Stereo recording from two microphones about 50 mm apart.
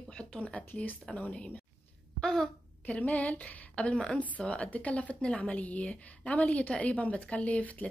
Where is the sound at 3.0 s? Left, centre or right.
Left.